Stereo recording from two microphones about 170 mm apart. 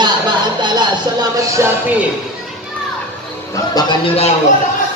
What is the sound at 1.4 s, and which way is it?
Music, 15° right (ahead or behind).